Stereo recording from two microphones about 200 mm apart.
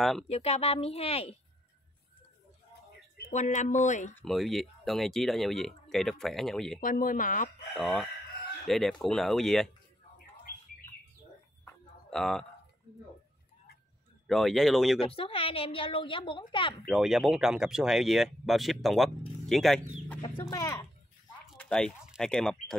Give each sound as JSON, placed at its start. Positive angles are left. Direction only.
{"t": 0.3, "sound": "a woman's voice", "side_deg": 30}
{"t": 3.3, "sound": "speech", "side_deg": 35}
{"t": 4.1, "sound": "speech", "side_deg": 5}
{"t": 6.8, "sound": "speech", "side_deg": 40}
{"t": 7.7, "sound": "speech", "side_deg": 0}
{"t": 12.1, "sound": "speech", "side_deg": 0}
{"t": 14.2, "sound": "speech", "side_deg": 0}
{"t": 15.0, "sound": "a woman's voice", "side_deg": 30}
{"t": 16.9, "sound": "speech", "side_deg": 0}
{"t": 20.3, "sound": "speech", "side_deg": 15}
{"t": 21.5, "sound": "speech", "side_deg": 5}